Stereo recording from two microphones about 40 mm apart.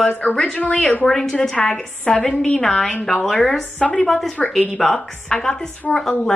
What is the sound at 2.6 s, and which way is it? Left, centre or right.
Speech, centre.